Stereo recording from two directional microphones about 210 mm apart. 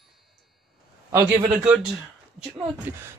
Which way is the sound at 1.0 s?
10° right (ahead or behind).